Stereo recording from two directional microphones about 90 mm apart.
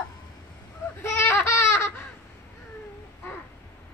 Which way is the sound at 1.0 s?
30° left (ahead or behind).